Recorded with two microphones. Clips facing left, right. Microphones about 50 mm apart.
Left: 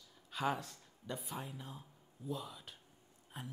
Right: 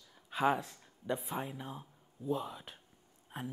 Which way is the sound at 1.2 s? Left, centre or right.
Right.